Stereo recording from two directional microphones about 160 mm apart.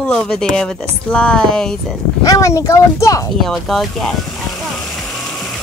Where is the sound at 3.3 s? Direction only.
Centre (ahead or behind).